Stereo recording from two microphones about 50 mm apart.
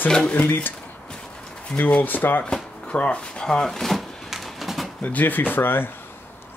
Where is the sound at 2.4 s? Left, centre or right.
Left; by 4.1 s centre.